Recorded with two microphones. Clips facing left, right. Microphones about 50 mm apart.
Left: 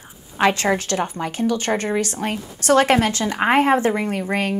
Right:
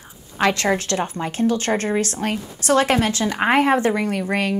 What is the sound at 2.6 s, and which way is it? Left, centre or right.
Speech, left.